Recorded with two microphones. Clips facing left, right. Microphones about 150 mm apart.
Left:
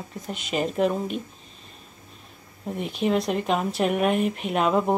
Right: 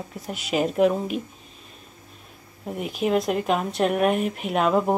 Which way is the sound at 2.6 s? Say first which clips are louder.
Even; 5° right (ahead or behind).